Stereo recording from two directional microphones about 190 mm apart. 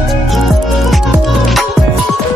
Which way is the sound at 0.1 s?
Centre (ahead or behind).